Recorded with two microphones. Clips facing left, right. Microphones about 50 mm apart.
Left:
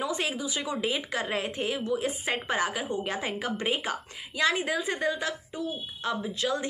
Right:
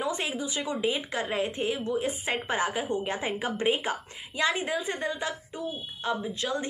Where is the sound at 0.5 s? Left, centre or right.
Centre.